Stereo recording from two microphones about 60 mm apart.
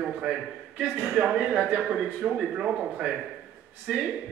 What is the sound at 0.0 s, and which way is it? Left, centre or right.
Speech, centre.